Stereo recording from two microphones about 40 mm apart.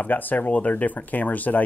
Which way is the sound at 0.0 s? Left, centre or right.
Left.